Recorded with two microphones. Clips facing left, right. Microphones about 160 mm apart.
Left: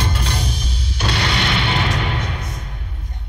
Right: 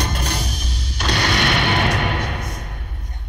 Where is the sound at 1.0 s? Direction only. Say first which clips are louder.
Right 1 dB; 45° right (ahead or behind).